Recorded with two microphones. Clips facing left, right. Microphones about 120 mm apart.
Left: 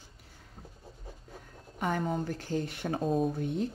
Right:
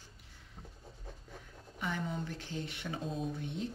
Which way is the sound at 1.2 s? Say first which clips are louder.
Left 3 dB; 45° left (ahead or behind).